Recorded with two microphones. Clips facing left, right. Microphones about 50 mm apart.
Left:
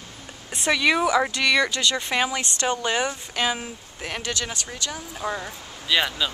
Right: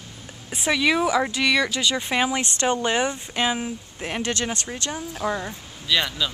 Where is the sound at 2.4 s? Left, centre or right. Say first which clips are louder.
Right 2 dB; right.